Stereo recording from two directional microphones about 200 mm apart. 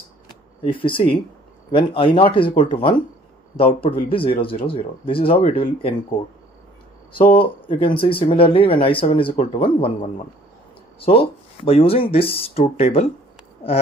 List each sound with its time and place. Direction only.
0.7 s speech: 25° left (ahead or behind)
7.3 s speech: 25° left (ahead or behind)